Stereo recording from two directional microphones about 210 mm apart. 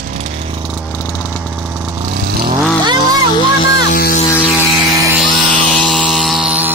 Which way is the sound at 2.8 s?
20° right (ahead or behind).